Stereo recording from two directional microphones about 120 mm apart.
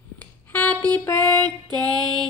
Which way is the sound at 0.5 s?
15° left (ahead or behind).